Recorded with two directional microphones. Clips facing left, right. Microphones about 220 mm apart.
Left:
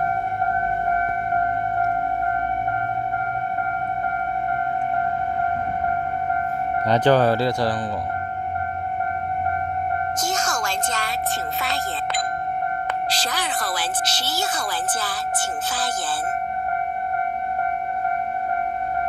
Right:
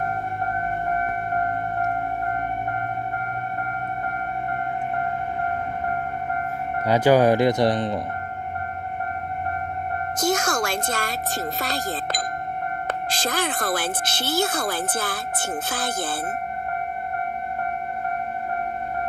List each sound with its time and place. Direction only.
6.9 s speech: 10° right (ahead or behind)
10.2 s music: 55° right (ahead or behind)
11.6 s a sound: 40° right (ahead or behind)
13.1 s speech: 50° right (ahead or behind)